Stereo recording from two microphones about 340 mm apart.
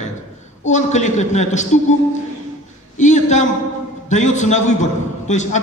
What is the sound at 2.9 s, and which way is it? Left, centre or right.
A man's voice, left.